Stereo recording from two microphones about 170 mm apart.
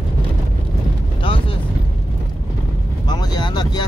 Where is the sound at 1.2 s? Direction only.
30° left (ahead or behind).